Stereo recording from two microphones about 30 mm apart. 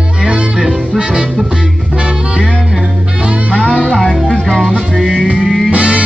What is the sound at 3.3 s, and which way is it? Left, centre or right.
Music, right.